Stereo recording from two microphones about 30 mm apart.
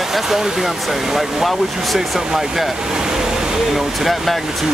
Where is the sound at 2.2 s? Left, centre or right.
Centre.